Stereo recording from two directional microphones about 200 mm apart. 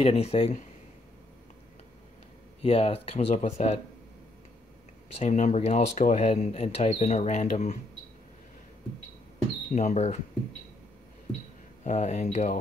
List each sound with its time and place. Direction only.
0.0 s speech: 30° left (ahead or behind)
2.6 s speech: 30° left (ahead or behind)
5.1 s speech: 35° left (ahead or behind)
9.7 s speech: 35° left (ahead or behind)
11.8 s speech: 35° left (ahead or behind)